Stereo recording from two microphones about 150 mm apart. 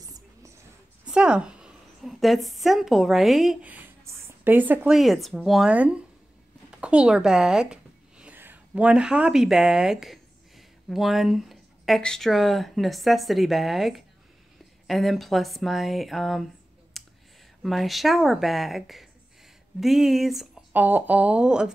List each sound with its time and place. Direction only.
0.0 s music: 25° right (ahead or behind)
1.0 s a woman's voice: 5° right (ahead or behind)
17.0 s clicking: centre (ahead or behind)
17.6 s speech: centre (ahead or behind)